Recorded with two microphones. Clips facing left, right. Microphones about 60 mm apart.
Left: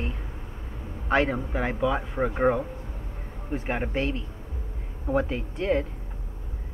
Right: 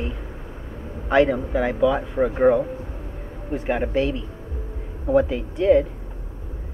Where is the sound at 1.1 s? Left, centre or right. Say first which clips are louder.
Right 6 dB; centre.